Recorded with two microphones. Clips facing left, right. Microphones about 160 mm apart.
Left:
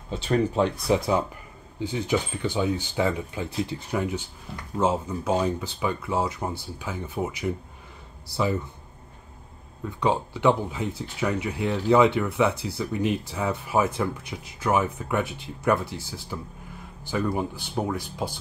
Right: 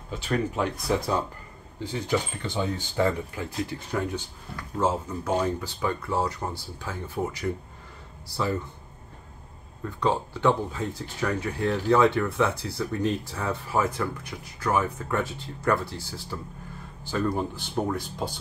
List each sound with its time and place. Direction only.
0.1 s speech: 25° left (ahead or behind)
9.8 s speech: 15° left (ahead or behind)